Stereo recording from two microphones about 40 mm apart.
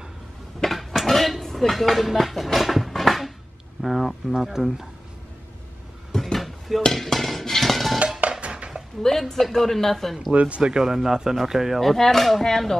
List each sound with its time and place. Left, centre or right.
0.6 s dishes: centre
3.8 s speech: centre
6.1 s a sound: centre
6.9 s music: centre
8.2 s music: right
9.3 s speech: centre
10.3 s speech: right
10.6 s speech: centre
11.8 s speech: centre